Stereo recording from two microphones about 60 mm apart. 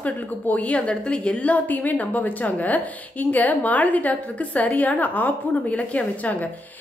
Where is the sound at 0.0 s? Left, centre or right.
Left.